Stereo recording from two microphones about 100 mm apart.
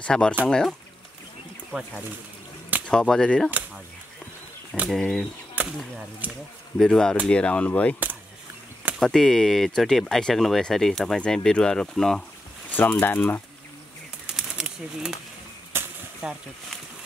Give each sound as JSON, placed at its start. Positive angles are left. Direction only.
{"t": 0.0, "sound": "speech", "side_deg": 10}
{"t": 1.7, "sound": "speech", "side_deg": -10}
{"t": 2.9, "sound": "speech", "side_deg": 10}
{"t": 4.8, "sound": "speech", "side_deg": 10}
{"t": 5.6, "sound": "chop", "side_deg": -15}
{"t": 6.8, "sound": "speech", "side_deg": 5}
{"t": 9.0, "sound": "speech", "side_deg": 5}
{"t": 12.6, "sound": "speech", "side_deg": 15}
{"t": 14.2, "sound": "bird", "side_deg": -5}
{"t": 15.7, "sound": "a sound", "side_deg": -20}
{"t": 16.2, "sound": "speech", "side_deg": -5}